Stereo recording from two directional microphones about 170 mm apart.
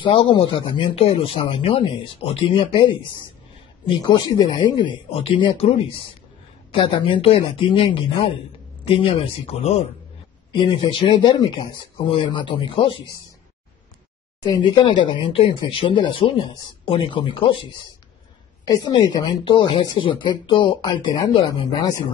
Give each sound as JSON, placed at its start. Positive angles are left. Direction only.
{"t": 0.0, "sound": "speech", "side_deg": 30}
{"t": 4.1, "sound": "speech", "side_deg": 25}
{"t": 10.5, "sound": "speech", "side_deg": 25}
{"t": 14.4, "sound": "speech", "side_deg": 20}
{"t": 18.9, "sound": "speech", "side_deg": 25}